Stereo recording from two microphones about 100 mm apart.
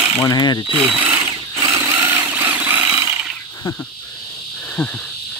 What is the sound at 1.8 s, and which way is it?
Vehicle, 30° right (ahead or behind).